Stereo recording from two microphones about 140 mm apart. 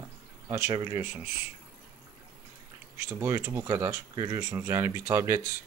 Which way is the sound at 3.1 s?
20° right (ahead or behind).